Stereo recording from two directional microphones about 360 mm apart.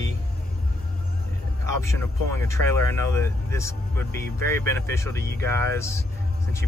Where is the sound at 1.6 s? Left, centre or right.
Centre.